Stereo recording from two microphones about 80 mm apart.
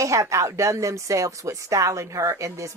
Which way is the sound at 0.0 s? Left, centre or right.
Right.